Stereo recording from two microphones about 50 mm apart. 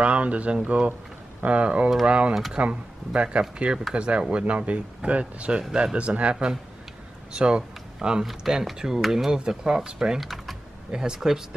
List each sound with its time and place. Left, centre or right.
0.0 s speech: right
5.6 s speech: centre
5.9 s speech: right
10.2 s speech: centre
10.9 s speech: centre